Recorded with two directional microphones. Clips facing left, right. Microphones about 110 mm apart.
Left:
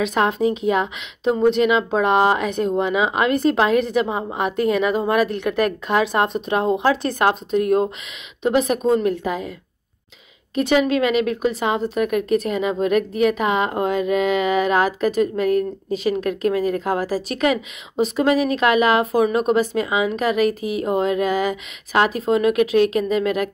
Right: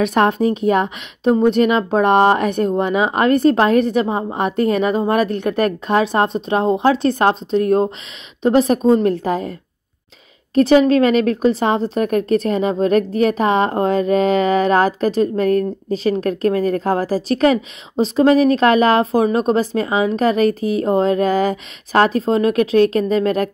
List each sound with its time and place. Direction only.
0.0 s a woman's voice: 55° right (ahead or behind); by 5.5 s 40° right (ahead or behind)
5.6 s a woman's voice: 25° right (ahead or behind)